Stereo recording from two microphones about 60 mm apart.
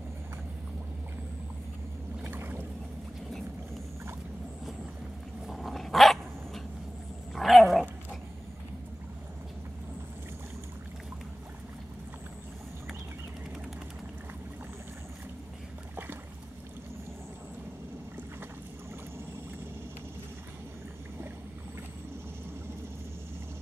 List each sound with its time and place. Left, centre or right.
2.2 s boat: right
5.5 s dog: centre